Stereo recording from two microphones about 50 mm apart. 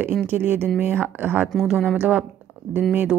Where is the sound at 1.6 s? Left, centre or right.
Centre.